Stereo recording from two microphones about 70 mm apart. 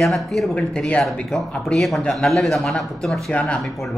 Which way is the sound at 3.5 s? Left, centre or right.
Centre.